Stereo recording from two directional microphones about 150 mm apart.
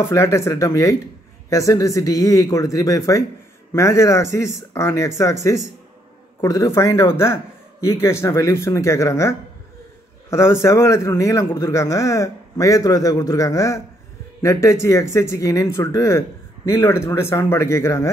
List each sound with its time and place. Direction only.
0.1 s speech: 20° left (ahead or behind)
10.3 s speech: 20° left (ahead or behind)